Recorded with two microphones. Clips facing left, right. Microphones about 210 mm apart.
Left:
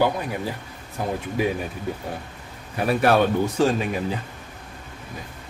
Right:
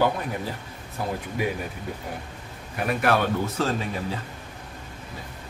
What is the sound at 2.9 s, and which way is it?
Speech, 30° left (ahead or behind).